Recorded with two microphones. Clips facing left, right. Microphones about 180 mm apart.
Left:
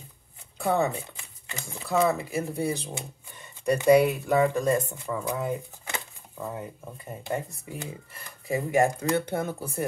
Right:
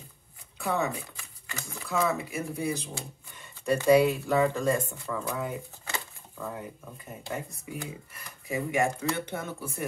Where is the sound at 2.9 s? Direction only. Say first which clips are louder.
Left 2 dB; 20° left (ahead or behind).